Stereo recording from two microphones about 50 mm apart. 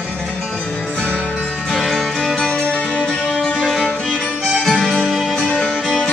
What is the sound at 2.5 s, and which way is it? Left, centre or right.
Music, left.